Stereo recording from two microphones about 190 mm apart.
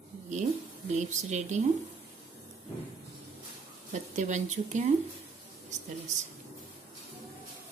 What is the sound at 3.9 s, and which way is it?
Speech, 40° right (ahead or behind).